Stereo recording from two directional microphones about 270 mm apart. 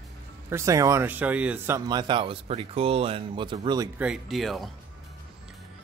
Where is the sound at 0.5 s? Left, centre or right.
Centre.